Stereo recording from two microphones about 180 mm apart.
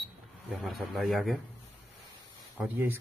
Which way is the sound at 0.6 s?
Centre (ahead or behind).